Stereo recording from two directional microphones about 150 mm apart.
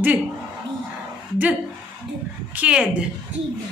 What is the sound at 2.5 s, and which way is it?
Speech, 10° right (ahead or behind).